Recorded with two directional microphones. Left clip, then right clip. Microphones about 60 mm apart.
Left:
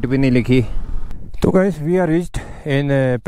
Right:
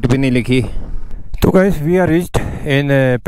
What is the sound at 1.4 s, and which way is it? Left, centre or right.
Speech, right.